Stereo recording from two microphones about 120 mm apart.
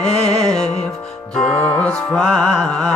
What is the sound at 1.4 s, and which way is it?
Music, 10° left (ahead or behind).